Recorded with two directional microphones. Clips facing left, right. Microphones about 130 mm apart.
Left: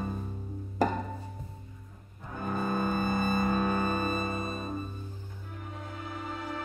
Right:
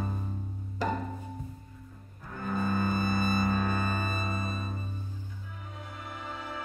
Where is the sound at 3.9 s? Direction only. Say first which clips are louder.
Left 3 dB; 35° left (ahead or behind).